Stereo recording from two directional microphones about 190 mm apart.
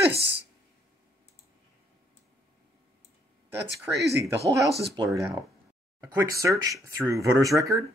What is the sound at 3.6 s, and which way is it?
Speech, 65° right (ahead or behind).